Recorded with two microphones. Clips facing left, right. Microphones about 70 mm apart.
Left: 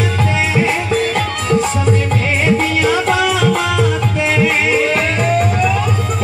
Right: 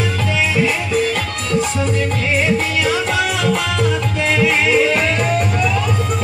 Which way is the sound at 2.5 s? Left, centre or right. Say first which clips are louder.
Left 3 dB; left.